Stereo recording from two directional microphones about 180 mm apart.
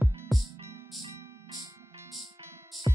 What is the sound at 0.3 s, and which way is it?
Music, centre (ahead or behind).